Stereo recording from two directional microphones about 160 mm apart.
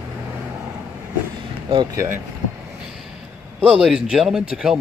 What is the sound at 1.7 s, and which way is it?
Speech, 25° right (ahead or behind).